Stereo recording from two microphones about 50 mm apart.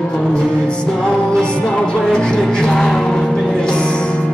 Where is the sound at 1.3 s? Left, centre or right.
Centre.